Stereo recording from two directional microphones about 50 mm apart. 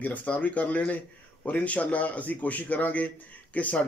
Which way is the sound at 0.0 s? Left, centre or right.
Left.